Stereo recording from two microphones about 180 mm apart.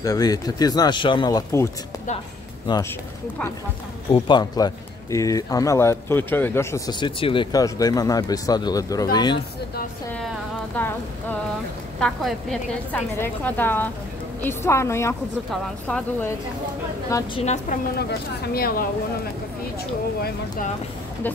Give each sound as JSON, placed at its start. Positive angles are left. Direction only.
{"t": 0.0, "sound": "speech", "side_deg": 20}
{"t": 4.1, "sound": "speech", "side_deg": 25}
{"t": 12.0, "sound": "a woman's voice", "side_deg": 0}
{"t": 17.4, "sound": "a woman's voice", "side_deg": 40}
{"t": 18.5, "sound": "speech", "side_deg": 55}